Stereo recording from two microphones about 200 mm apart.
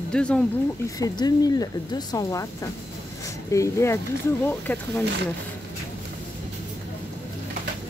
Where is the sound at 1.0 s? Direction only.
20° left (ahead or behind).